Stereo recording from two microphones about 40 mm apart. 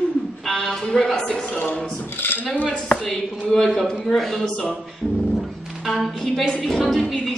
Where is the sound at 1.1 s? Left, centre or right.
Left.